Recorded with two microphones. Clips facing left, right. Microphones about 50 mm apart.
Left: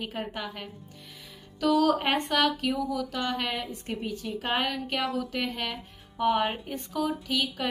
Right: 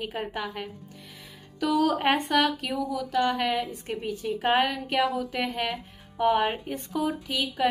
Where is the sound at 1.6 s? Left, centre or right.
Centre.